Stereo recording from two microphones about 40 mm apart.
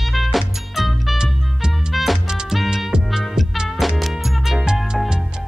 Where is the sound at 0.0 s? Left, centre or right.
Centre.